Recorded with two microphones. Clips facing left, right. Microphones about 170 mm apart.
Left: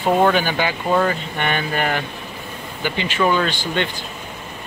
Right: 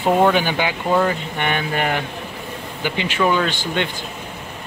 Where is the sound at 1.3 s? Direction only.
15° right (ahead or behind).